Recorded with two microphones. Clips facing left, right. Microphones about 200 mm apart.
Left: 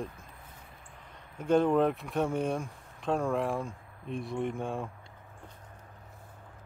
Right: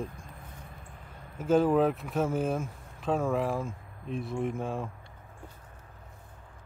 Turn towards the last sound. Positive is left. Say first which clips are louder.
# right 1 dB
turn(degrees=0)  # may be behind; listen again after turning